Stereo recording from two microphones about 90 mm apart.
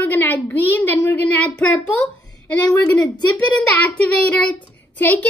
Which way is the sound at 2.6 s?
50° left (ahead or behind).